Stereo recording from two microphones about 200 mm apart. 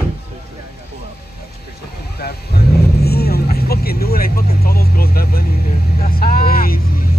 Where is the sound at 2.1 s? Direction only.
50° left (ahead or behind).